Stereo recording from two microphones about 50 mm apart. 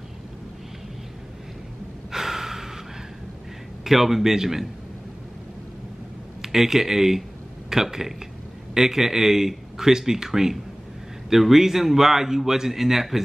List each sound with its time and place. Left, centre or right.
2.0 s gasp: centre
3.8 s speech: centre
6.4 s speech: centre